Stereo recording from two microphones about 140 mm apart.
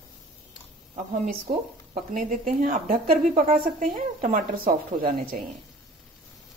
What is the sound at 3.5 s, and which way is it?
Speech, 75° right (ahead or behind).